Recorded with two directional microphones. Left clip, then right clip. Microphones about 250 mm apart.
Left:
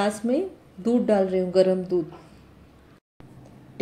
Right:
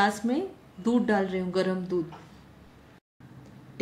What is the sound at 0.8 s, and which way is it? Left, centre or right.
Speech, centre.